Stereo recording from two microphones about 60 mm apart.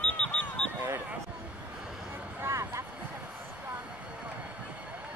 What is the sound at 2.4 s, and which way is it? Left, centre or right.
Music, right.